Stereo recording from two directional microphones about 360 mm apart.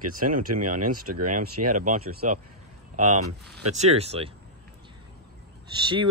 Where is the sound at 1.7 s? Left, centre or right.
Right.